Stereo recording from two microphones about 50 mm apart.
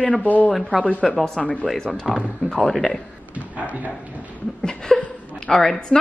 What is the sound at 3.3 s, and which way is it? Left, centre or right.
Speech, right.